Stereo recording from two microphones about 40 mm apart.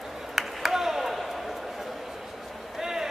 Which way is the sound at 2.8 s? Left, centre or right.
Centre.